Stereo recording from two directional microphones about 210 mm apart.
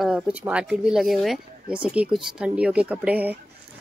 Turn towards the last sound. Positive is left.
turn(degrees=-5)  # may be behind; listen again after turning